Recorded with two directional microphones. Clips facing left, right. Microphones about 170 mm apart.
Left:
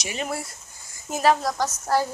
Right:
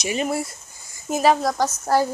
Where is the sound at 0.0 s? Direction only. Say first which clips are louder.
Right 6 dB; 15° right (ahead or behind).